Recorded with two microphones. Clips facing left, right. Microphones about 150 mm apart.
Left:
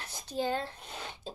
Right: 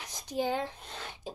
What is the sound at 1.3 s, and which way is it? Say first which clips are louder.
Beatboxing: right 3 dB; 15° right (ahead or behind).